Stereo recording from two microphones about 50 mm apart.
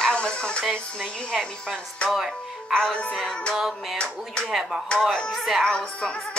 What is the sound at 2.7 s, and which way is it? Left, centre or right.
Music, centre.